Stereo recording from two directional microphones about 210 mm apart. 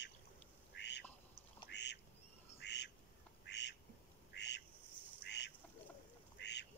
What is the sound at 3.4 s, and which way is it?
Duck, 55° left (ahead or behind).